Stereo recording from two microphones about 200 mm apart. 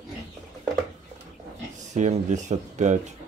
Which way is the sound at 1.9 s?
35° right (ahead or behind).